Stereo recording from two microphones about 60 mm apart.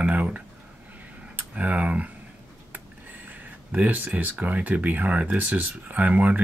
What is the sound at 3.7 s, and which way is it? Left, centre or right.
Speech, right.